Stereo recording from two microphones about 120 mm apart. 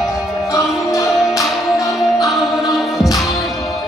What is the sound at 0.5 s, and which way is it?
Music, 25° left (ahead or behind).